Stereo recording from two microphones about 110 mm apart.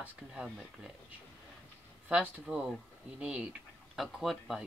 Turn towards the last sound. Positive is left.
turn(degrees=0)  # may be behind; listen again after turning